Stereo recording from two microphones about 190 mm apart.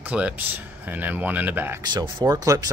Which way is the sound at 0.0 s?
10° right (ahead or behind).